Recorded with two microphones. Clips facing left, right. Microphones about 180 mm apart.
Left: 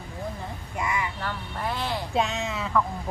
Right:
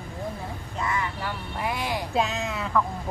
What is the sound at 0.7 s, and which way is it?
Vehicle, 15° left (ahead or behind).